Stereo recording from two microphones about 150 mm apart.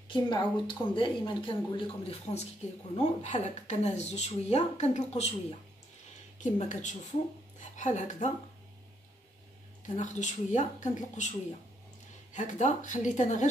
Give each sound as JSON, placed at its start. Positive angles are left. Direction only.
{"t": 0.1, "sound": "speech", "side_deg": 35}
{"t": 9.9, "sound": "speech", "side_deg": 55}